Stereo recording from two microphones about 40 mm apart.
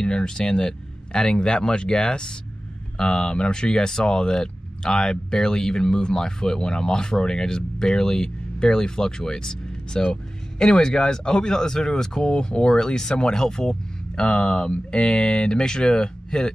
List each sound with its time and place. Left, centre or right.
0.0 s speech: left